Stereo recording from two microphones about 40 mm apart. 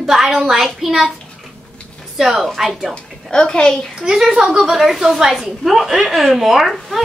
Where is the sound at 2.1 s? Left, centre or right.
Centre.